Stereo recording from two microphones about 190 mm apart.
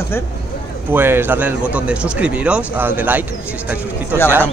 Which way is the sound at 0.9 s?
10° right (ahead or behind).